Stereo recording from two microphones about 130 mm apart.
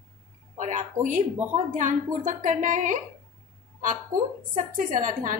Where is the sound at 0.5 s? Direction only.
70° right (ahead or behind).